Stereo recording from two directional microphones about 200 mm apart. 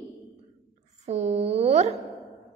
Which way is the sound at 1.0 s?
35° right (ahead or behind).